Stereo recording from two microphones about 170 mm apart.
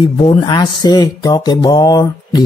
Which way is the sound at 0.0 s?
30° left (ahead or behind).